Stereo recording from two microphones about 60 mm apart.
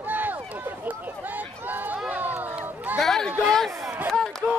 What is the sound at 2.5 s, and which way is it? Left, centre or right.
Children playing, right.